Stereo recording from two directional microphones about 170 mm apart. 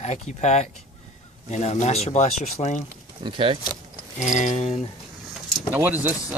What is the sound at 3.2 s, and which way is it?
Speech, 30° right (ahead or behind).